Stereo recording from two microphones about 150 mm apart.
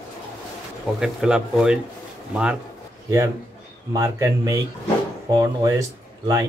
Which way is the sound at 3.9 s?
20° right (ahead or behind).